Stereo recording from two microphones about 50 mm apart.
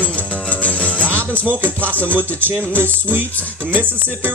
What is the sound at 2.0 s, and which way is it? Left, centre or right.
Speech, right.